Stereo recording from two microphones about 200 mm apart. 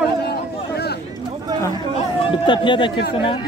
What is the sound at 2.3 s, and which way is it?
A man's voice, 25° left (ahead or behind).